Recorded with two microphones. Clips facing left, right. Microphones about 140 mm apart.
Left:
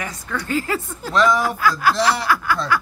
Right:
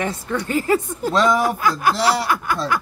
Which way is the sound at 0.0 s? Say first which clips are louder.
Right 5 dB; 25° right (ahead or behind).